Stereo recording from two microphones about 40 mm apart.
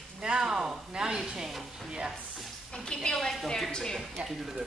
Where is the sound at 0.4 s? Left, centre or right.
Centre.